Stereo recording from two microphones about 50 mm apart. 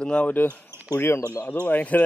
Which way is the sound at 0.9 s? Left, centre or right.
Left.